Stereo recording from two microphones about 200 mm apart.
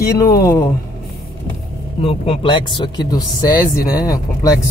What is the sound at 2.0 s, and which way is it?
Speech, 30° left (ahead or behind).